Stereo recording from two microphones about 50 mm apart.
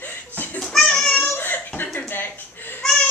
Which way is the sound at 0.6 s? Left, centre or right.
Centre.